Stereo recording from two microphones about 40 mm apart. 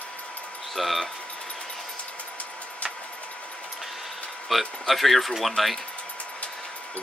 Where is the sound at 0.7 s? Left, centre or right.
Centre.